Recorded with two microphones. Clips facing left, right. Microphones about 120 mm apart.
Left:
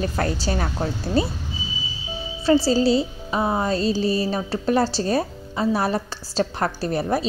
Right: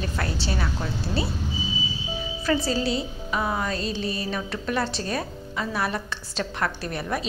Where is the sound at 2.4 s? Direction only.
30° left (ahead or behind).